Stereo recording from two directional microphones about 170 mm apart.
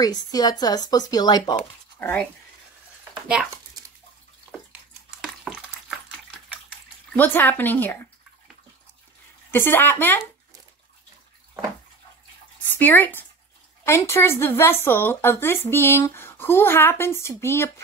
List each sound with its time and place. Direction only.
0.0 s speech: 25° left (ahead or behind)
2.0 s speech: 10° left (ahead or behind)
5.2 s water: centre (ahead or behind)
7.2 s speech: 10° left (ahead or behind)
9.5 s speech: 10° left (ahead or behind)
12.6 s speech: 10° left (ahead or behind)